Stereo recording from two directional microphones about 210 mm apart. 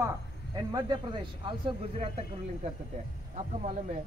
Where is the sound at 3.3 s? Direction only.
35° right (ahead or behind).